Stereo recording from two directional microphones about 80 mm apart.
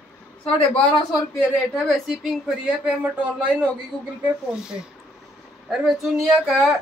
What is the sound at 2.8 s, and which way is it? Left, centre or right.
Speech, centre.